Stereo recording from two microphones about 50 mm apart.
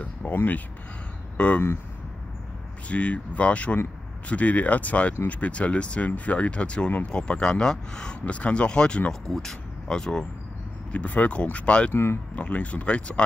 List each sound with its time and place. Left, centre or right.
0.0 s speech: left
1.3 s speech: left
2.9 s speech: left
10.9 s speech: left
11.9 s speech: left
12.4 s speech: left